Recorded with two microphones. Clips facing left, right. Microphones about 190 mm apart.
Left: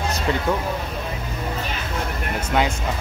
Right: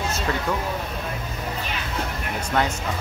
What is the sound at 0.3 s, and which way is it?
Speech, 25° left (ahead or behind).